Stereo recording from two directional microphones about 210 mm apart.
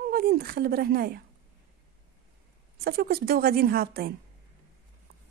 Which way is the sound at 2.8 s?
45° right (ahead or behind).